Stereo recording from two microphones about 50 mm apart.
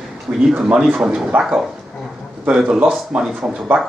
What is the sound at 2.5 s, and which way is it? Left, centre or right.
Speech, centre.